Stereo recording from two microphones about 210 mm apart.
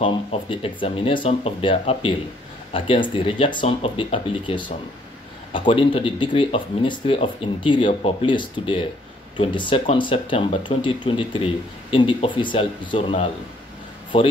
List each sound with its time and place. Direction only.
0.0 s speech: 25° left (ahead or behind)